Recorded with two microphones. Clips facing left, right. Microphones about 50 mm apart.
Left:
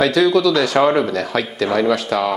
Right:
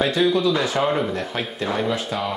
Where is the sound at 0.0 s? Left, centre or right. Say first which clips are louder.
Left 5 dB; left.